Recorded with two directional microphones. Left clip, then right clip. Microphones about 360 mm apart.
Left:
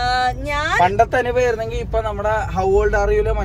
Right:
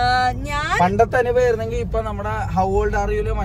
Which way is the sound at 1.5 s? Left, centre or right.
Centre.